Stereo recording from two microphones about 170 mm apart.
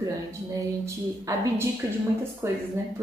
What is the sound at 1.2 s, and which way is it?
Speech, 20° right (ahead or behind).